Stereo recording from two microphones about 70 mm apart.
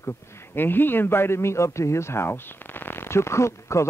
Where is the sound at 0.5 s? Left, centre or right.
Left.